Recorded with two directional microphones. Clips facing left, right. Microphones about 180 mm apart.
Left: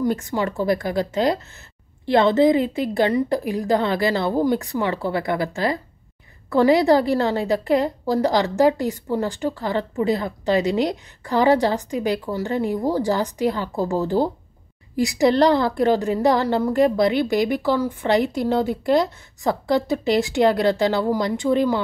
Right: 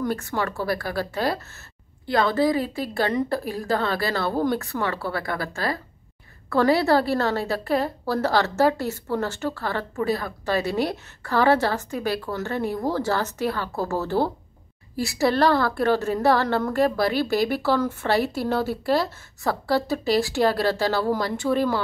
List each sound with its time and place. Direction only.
0.0 s a woman's voice: 15° left (ahead or behind)